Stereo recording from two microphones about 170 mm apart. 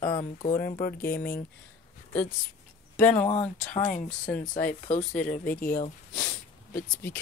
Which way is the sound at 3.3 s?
40° left (ahead or behind).